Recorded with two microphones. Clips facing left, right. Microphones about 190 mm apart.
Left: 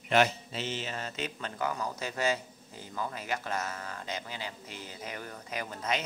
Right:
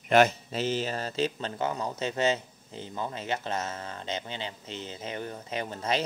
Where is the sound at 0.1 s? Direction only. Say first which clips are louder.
Right 5 dB; 45° right (ahead or behind).